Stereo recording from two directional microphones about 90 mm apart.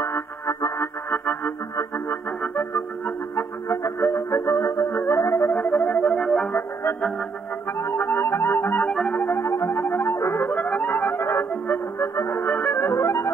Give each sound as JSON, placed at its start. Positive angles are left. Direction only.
{"t": 0.6, "sound": "music", "side_deg": 40}
{"t": 1.1, "sound": "music", "side_deg": 20}
{"t": 5.8, "sound": "music", "side_deg": 15}
{"t": 6.5, "sound": "music", "side_deg": 25}
{"t": 8.8, "sound": "music", "side_deg": 5}
{"t": 9.3, "sound": "music", "side_deg": 30}